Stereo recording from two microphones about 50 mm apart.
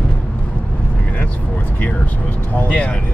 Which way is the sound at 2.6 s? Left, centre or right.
Left.